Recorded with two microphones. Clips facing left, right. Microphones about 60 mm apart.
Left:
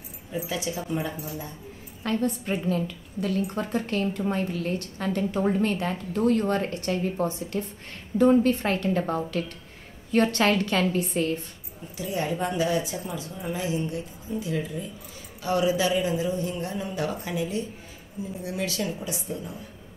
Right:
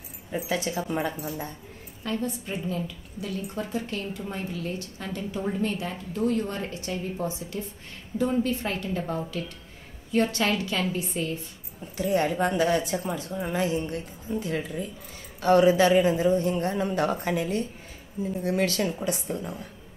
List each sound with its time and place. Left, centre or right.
0.3 s a man's voice: right
2.0 s a woman's voice: left
12.0 s a man's voice: right